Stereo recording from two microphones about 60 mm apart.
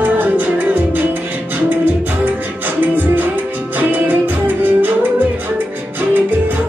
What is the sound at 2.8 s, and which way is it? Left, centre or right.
Music, right.